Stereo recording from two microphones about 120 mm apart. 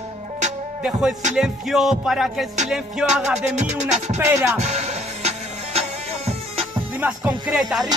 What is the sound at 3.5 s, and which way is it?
Music, 75° right (ahead or behind).